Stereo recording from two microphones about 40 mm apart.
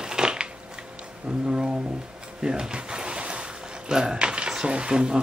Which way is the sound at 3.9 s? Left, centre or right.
Centre.